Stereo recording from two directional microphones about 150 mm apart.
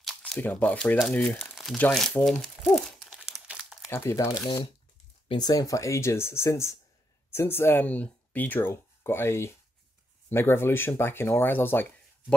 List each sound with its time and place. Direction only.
0.0 s speech: 5° left (ahead or behind)
1.8 s crumpling: 5° left (ahead or behind)
3.8 s speech: 15° left (ahead or behind)
5.3 s speech: 25° left (ahead or behind)